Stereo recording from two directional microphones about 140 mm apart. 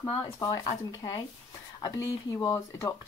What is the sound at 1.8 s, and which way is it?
Speech, 25° left (ahead or behind).